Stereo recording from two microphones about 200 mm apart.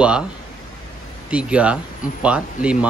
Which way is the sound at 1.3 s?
5° right (ahead or behind).